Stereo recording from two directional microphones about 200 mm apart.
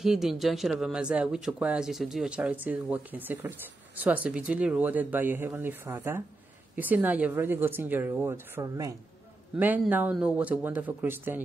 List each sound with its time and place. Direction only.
0.0 s speech: centre (ahead or behind)